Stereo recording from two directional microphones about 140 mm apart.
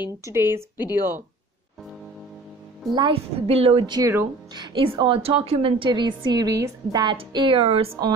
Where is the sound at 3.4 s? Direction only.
45° right (ahead or behind).